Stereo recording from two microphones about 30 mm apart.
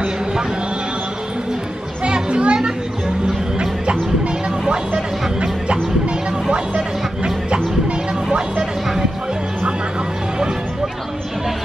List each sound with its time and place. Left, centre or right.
2.0 s children playing: right
3.5 s a sound: right
4.6 s music: right
8.3 s music: right